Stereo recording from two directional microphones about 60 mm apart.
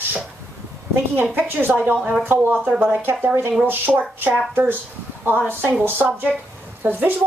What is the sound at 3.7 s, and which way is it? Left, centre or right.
A woman's voice, right.